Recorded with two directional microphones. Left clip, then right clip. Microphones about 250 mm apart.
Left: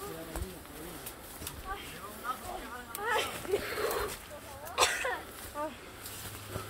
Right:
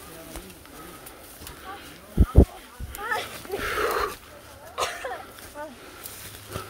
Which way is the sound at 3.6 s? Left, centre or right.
Right.